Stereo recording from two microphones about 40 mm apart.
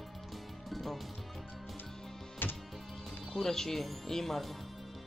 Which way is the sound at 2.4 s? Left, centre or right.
Left.